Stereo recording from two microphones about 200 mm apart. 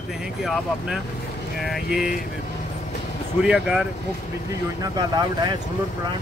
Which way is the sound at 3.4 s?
5° right (ahead or behind).